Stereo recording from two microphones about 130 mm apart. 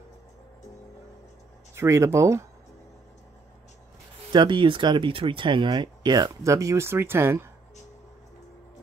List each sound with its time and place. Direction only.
1.8 s speech: 20° right (ahead or behind)
4.3 s speech: 35° right (ahead or behind); by 7.4 s 20° right (ahead or behind)